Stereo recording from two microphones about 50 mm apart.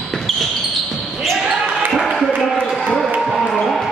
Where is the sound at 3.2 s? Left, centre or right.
Centre.